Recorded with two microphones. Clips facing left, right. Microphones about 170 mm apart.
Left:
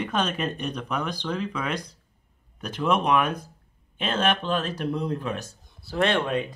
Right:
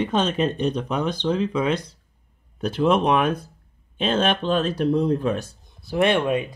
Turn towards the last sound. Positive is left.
turn(degrees=-10)  # may be behind; listen again after turning